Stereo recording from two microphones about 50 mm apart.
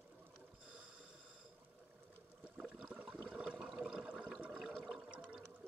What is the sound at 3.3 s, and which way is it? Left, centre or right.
Toilet flush, centre.